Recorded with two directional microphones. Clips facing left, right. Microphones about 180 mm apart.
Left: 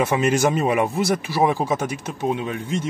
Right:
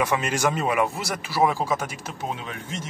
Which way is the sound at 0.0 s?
20° left (ahead or behind).